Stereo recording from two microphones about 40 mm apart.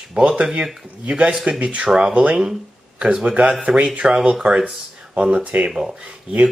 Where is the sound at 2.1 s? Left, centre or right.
Right.